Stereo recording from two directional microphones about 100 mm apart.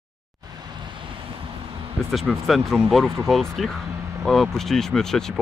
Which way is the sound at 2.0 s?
15° right (ahead or behind).